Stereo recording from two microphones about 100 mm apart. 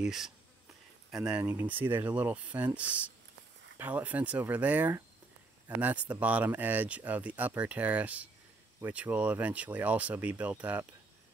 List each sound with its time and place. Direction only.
0.0 s speech: 5° right (ahead or behind)
1.4 s speech: 20° right (ahead or behind)